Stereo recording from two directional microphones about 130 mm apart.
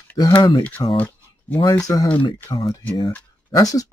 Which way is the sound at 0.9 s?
10° left (ahead or behind).